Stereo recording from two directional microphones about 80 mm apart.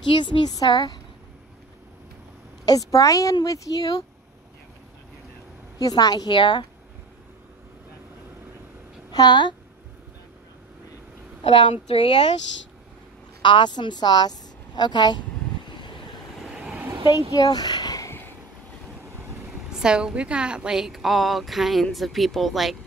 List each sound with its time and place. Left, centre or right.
0.1 s a woman's voice: left
0.6 s speech: left
2.6 s a woman's voice: left
5.8 s speech: left
9.1 s a woman's voice: left
11.5 s speech: left
13.4 s a woman's voice: left
15.6 s vehicle: left
16.4 s vehicle: centre
17.1 s speech: left
19.7 s a woman's voice: centre